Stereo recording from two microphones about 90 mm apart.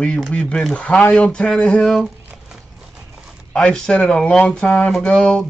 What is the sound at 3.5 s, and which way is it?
Speech, 10° left (ahead or behind).